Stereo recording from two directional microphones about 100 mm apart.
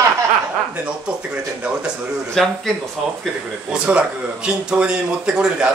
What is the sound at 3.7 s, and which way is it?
Speech, 10° right (ahead or behind).